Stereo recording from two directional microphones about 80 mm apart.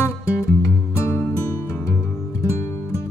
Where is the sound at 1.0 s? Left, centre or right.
Left.